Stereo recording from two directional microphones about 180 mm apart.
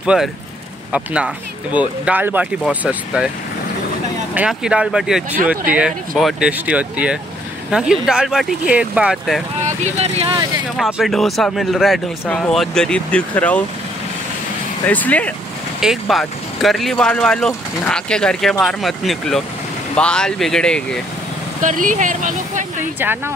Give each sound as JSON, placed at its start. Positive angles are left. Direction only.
{"t": 0.0, "sound": "speech", "side_deg": -5}
{"t": 4.3, "sound": "speech", "side_deg": -5}
{"t": 9.7, "sound": "speech", "side_deg": -40}
{"t": 10.8, "sound": "speech", "side_deg": -5}
{"t": 14.9, "sound": "speech", "side_deg": 10}
{"t": 21.6, "sound": "speech", "side_deg": -45}
{"t": 22.9, "sound": "speech", "side_deg": -10}